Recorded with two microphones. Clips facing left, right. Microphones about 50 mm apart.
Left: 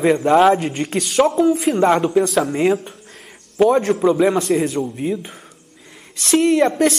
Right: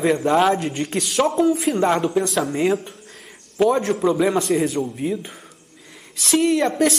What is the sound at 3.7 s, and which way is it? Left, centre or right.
Speech, centre.